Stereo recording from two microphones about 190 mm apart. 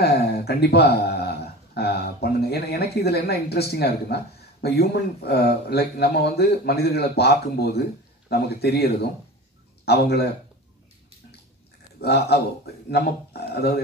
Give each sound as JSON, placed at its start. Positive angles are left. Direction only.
{"t": 0.0, "sound": "a sound", "side_deg": 60}
{"t": 2.2, "sound": "speech", "side_deg": 55}
{"t": 12.0, "sound": "speech", "side_deg": 60}